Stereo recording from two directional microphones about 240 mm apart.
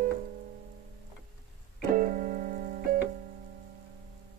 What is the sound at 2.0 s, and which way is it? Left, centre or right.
Piano, right.